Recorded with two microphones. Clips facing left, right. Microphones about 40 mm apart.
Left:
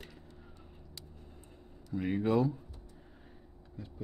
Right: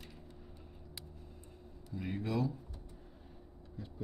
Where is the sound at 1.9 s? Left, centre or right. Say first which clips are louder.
Left 7 dB; left.